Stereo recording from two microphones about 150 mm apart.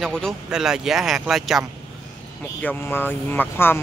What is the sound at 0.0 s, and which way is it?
Speech, centre (ahead or behind).